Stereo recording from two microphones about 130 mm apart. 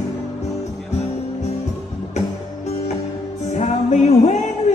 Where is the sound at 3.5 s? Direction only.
60° left (ahead or behind).